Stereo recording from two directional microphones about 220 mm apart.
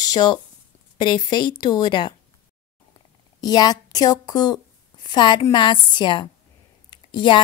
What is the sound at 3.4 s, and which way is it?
A woman's voice, 15° left (ahead or behind).